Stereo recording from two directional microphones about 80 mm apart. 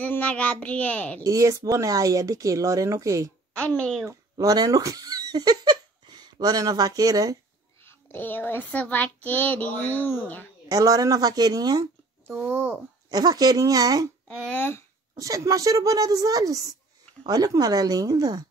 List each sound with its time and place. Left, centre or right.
0.0 s a child's voice: centre
1.2 s speech: right
3.5 s a child's voice: centre
4.1 s a sound: right
6.6 s speech: right
7.8 s a child's voice: left
10.7 s speech: right
12.4 s a child's voice: right
13.1 s speech: right
14.2 s speech: centre
15.1 s speech: right